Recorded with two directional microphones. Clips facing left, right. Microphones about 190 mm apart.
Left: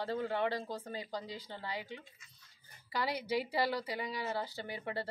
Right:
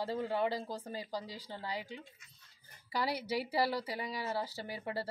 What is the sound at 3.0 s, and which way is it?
Speech, 35° right (ahead or behind).